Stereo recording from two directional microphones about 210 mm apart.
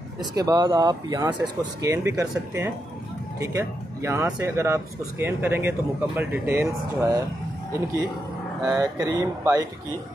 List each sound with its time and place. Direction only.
0.2 s speech: 20° right (ahead or behind)
8.6 s speech: 15° right (ahead or behind)